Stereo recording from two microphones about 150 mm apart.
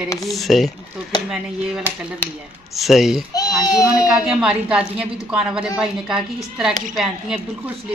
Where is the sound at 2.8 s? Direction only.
Centre (ahead or behind).